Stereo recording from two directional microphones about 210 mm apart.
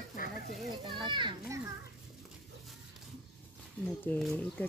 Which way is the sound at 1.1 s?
20° right (ahead or behind).